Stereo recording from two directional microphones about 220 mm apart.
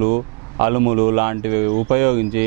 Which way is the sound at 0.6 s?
15° right (ahead or behind).